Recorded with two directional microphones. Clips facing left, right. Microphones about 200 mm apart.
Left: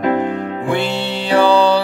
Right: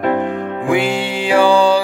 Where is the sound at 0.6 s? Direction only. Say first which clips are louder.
Right 4 dB; 10° right (ahead or behind).